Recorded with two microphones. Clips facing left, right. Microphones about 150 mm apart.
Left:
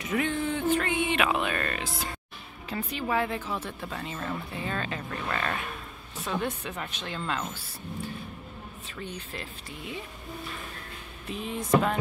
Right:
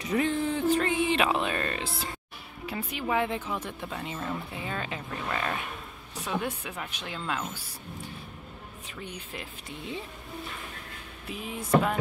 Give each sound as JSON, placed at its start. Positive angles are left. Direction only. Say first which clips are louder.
{"t": 0.0, "sound": "music", "louder": "right 1 dB", "side_deg": -35}
{"t": 2.6, "sound": "speech", "louder": "left 1 dB", "side_deg": -10}
{"t": 9.0, "sound": "speech", "louder": "left 2 dB", "side_deg": -15}
{"t": 11.2, "sound": "speech", "louder": "left 3 dB", "side_deg": -10}